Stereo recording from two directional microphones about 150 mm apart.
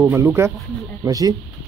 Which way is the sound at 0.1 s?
20° right (ahead or behind).